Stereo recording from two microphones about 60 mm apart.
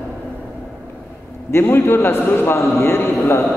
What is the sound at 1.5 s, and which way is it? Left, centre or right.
A man's voice, left.